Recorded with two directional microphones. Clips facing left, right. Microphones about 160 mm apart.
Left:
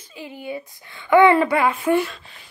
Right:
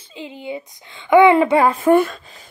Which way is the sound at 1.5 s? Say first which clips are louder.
Right 5 dB; 40° right (ahead or behind).